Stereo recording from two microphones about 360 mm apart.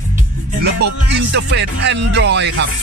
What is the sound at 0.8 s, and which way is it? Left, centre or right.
Music, right.